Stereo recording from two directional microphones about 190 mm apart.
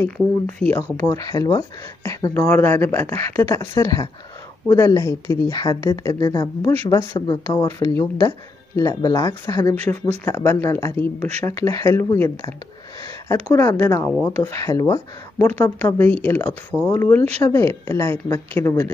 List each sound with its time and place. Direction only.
0.2 s speech: 5° left (ahead or behind)
0.9 s speech: 20° left (ahead or behind)